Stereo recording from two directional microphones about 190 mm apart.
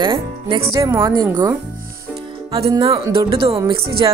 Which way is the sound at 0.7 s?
15° right (ahead or behind).